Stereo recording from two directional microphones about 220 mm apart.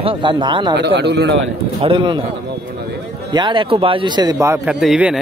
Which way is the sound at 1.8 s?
20° right (ahead or behind).